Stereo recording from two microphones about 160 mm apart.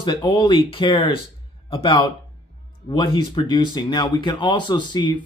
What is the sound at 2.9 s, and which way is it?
Speech, 30° left (ahead or behind).